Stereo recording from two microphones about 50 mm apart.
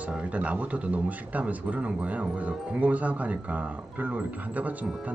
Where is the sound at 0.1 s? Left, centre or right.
Right.